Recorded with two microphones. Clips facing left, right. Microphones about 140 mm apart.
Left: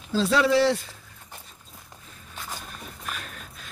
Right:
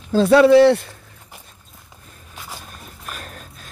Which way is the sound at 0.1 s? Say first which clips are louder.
Right 10 dB; 55° right (ahead or behind).